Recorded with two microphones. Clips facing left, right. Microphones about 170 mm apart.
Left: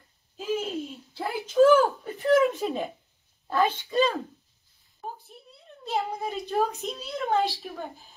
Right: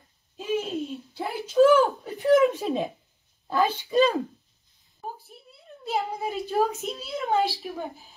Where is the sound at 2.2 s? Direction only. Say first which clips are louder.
Right 2 dB; 15° right (ahead or behind).